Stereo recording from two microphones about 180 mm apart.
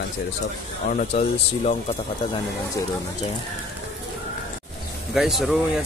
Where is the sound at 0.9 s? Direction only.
45° left (ahead or behind).